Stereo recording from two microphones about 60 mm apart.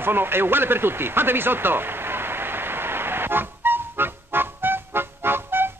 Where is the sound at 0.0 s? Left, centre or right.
Right.